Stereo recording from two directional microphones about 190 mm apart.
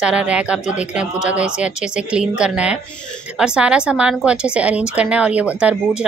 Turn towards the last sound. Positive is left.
turn(degrees=-5)  # may be behind; listen again after turning